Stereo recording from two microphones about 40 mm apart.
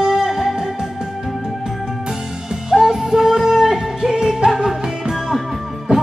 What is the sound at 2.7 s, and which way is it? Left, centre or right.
Music, centre.